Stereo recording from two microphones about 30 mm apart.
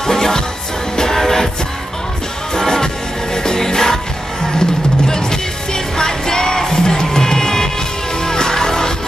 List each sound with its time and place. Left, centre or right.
0.0 s music: centre
2.5 s music: centre